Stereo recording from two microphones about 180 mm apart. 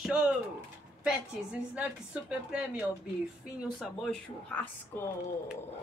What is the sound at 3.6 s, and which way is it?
Speech, centre (ahead or behind).